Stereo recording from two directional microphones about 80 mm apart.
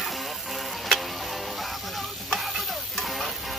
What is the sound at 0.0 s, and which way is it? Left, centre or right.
Music, centre.